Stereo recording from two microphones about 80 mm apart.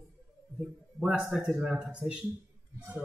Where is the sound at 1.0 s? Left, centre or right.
Centre.